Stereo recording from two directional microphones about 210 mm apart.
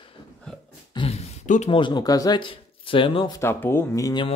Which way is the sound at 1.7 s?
20° left (ahead or behind).